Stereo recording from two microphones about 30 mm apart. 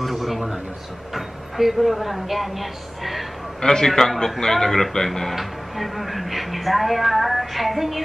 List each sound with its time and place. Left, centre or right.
0.0 s a sound: centre
1.1 s speech: centre
3.6 s speech: centre
5.3 s speech: centre